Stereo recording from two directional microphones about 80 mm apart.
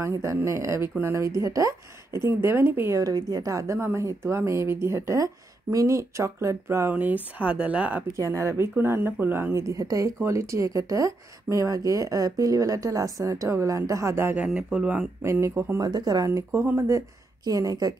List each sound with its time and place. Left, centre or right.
0.0 s speech: right
3.0 s speech: right
6.9 s speech: right
8.2 s speech: right
9.5 s speech: right
14.3 s speech: centre
15.4 s speech: right
15.8 s speech: right
16.3 s speech: right
17.5 s speech: right